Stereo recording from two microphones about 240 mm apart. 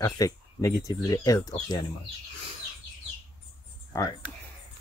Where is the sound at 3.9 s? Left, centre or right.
Centre.